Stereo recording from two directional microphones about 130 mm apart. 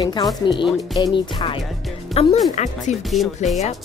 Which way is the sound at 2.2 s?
50° left (ahead or behind).